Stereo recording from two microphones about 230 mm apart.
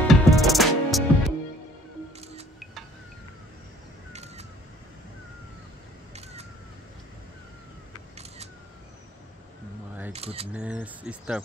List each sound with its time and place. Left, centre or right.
0.1 s music: centre
4.1 s crow: right
10.1 s camera: right
10.5 s speech: centre